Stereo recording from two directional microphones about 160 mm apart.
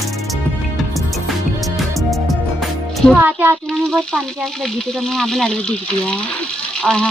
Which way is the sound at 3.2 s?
10° right (ahead or behind).